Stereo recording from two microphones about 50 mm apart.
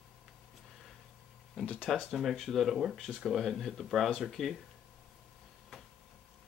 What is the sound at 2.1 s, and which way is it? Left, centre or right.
Speech, centre.